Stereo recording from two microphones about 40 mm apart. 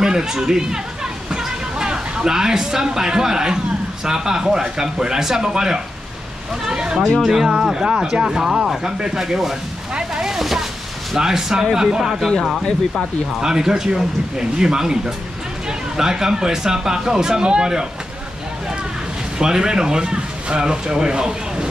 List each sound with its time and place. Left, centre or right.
0.0 s speech: centre
9.9 s a sound: right
10.3 s a sound: centre
11.1 s speech: centre
13.4 s speech: centre
19.3 s speech: centre